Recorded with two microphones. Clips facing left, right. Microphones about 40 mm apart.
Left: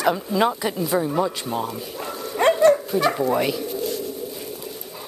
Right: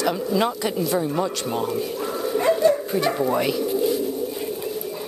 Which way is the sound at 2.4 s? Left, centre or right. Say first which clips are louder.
Left 3 dB; left.